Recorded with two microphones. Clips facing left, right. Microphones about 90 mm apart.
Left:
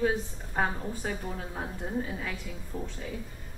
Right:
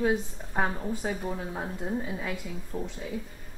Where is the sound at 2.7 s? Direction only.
20° right (ahead or behind).